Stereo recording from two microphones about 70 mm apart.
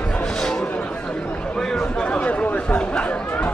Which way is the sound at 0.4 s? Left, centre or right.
Centre.